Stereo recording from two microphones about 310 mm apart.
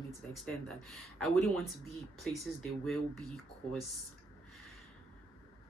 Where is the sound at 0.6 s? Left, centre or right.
Centre.